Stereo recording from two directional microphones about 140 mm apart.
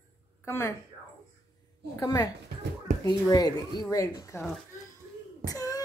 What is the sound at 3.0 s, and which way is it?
Speech, 30° left (ahead or behind).